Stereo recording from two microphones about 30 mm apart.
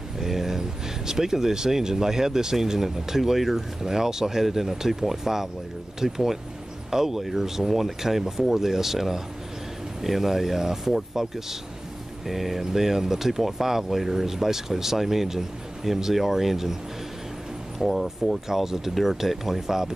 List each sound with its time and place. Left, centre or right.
0.2 s speech: centre
17.7 s speech: centre
18.5 s speech: centre